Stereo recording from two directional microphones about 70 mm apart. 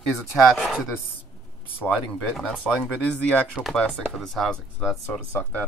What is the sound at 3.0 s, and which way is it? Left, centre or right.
Speech, centre.